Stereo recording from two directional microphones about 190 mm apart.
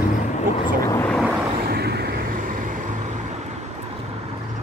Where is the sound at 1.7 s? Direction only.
55° right (ahead or behind).